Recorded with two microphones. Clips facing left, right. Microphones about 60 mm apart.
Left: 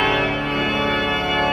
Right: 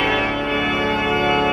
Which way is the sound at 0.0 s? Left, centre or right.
Right.